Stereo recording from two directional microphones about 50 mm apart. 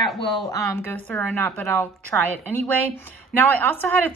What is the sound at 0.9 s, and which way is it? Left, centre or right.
Speech, left.